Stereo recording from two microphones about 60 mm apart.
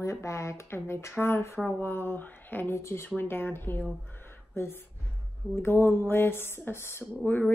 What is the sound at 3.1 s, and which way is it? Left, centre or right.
Speech, left.